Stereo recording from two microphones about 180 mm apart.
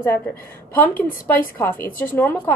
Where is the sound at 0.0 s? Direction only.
10° left (ahead or behind).